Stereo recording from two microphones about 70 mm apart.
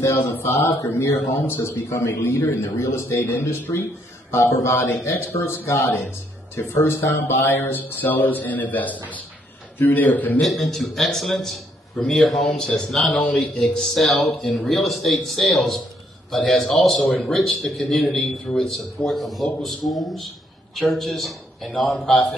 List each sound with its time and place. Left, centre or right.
0.0 s a man's voice: left
10.4 s speech: centre
21.8 s a man's voice: centre